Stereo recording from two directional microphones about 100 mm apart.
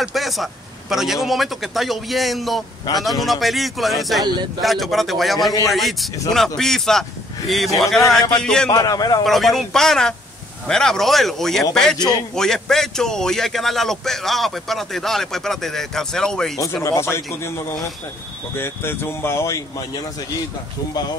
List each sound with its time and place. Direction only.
0.0 s a man's voice: centre (ahead or behind)
8.7 s a man's voice: 40° left (ahead or behind)
9.2 s a man's voice: centre (ahead or behind)
12.0 s a man's voice: 45° left (ahead or behind)
12.4 s a man's voice: 5° left (ahead or behind)
16.8 s speech: 30° left (ahead or behind)
18.5 s speech: 25° left (ahead or behind)